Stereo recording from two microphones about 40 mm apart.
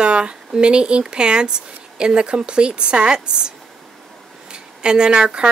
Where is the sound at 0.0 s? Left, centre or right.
Right.